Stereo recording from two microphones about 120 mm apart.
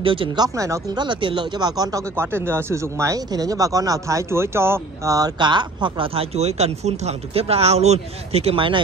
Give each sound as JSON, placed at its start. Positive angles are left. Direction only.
{"t": 0.0, "sound": "speech", "side_deg": -45}
{"t": 0.6, "sound": "speech", "side_deg": -25}
{"t": 1.0, "sound": "speech", "side_deg": -40}
{"t": 2.1, "sound": "speech", "side_deg": -20}